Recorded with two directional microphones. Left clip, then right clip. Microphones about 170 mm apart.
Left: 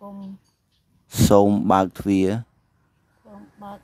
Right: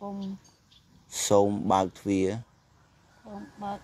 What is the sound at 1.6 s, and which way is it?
Speech, 40° left (ahead or behind).